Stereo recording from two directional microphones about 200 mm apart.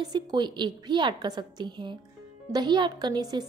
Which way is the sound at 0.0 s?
20° right (ahead or behind).